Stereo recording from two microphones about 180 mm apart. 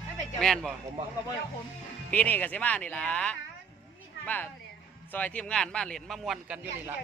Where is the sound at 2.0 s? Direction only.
10° left (ahead or behind).